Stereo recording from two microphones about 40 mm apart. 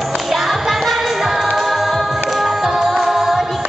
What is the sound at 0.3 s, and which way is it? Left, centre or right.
Music, centre.